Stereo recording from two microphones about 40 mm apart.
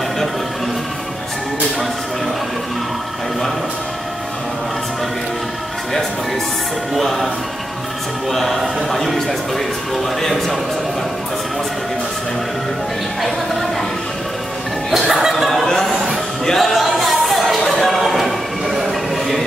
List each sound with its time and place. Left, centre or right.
6.9 s a man's voice: centre
8.3 s a man's voice: centre
13.2 s a man's voice: centre
14.9 s chuckle: centre
16.5 s a sound: centre